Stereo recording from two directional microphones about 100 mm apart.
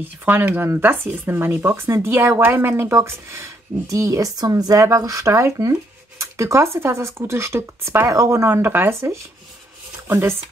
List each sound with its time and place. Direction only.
0.2 s speech: 20° right (ahead or behind)